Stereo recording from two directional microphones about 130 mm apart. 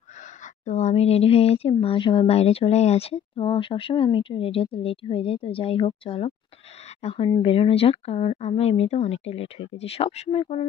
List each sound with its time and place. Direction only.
0.7 s speech: 65° left (ahead or behind)